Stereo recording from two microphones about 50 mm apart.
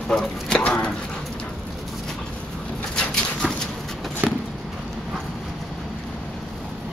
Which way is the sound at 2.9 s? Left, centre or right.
Centre.